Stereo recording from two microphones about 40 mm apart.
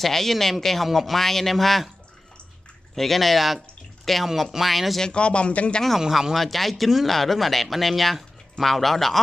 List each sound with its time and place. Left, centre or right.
0.0 s speech: centre
3.0 s speech: centre
5.0 s speech: left
5.9 s speech: centre